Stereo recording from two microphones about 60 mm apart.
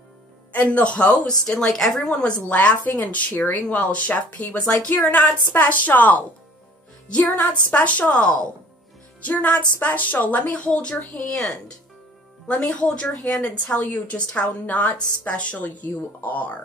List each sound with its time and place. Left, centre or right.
0.5 s a woman's voice: left